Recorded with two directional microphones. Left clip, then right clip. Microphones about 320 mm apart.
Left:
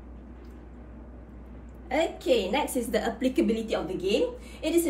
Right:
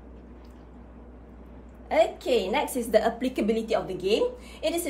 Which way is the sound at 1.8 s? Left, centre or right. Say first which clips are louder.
Right 2 dB; centre.